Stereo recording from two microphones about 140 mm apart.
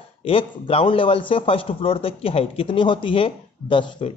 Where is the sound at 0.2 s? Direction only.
40° left (ahead or behind).